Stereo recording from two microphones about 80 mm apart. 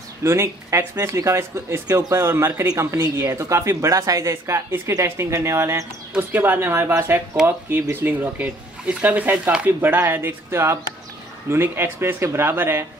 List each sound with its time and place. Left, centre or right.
0.2 s speech: right